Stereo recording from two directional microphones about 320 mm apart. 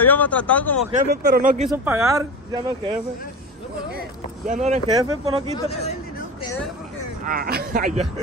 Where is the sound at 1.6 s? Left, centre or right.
Centre.